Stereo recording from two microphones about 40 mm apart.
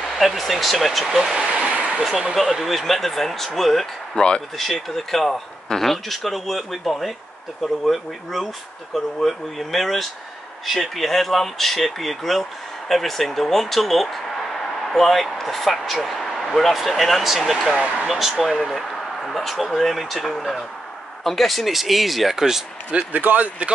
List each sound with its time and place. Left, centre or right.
0.2 s speech: centre
1.1 s speech: centre
1.5 s a sound: right
2.3 s speech: centre
4.1 s speech: centre
4.6 s speech: centre
22.8 s speech: right